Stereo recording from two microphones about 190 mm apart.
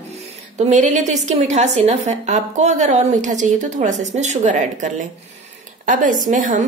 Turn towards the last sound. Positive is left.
turn(degrees=-45)  # may be behind; listen again after turning